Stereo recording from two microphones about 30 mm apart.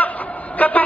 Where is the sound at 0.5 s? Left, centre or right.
Left.